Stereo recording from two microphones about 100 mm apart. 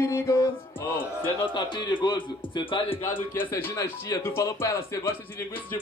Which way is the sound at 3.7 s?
30° left (ahead or behind).